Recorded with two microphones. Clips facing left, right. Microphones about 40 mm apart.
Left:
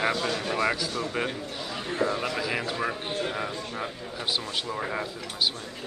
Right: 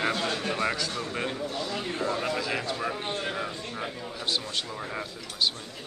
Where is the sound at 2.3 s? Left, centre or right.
Centre.